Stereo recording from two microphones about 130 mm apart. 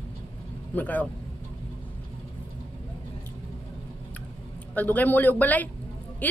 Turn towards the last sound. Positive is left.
turn(degrees=15)  # may be behind; listen again after turning